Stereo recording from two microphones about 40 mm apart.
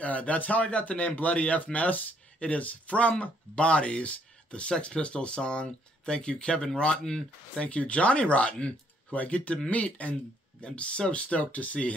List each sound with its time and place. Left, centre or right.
0.0 s a man's voice: left; by 7.6 s centre
7.6 s a man's voice: left